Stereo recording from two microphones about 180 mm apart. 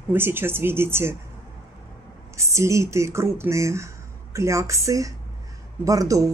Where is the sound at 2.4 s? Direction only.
15° right (ahead or behind).